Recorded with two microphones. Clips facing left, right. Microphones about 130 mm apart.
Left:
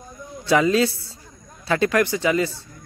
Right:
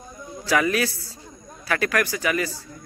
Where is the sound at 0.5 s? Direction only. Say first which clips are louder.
Left 4 dB; 20° left (ahead or behind).